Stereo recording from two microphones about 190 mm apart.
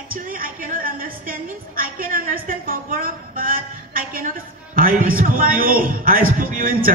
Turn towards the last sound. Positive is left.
turn(degrees=-45)  # may be behind; listen again after turning